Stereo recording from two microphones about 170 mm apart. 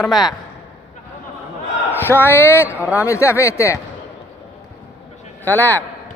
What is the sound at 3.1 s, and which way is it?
Speech, 15° left (ahead or behind).